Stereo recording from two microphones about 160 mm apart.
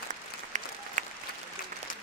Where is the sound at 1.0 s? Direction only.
50° right (ahead or behind).